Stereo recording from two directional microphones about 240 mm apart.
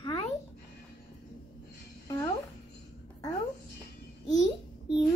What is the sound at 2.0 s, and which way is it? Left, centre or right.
Music, centre.